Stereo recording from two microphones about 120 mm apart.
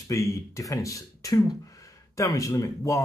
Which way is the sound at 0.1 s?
25° left (ahead or behind).